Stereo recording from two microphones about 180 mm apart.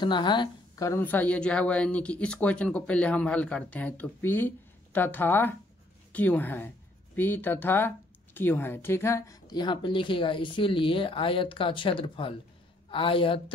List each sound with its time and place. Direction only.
0.0 s a woman's voice: 25° left (ahead or behind)